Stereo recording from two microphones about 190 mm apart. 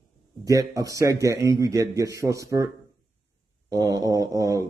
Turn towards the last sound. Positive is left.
turn(degrees=-15)  # may be behind; listen again after turning